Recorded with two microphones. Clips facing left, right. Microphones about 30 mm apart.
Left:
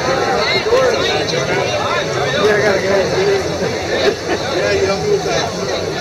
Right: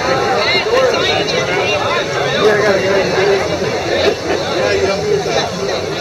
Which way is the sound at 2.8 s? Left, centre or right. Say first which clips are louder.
Right 1 dB; centre.